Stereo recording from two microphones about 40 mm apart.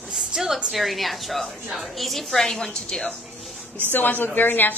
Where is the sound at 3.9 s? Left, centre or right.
Left.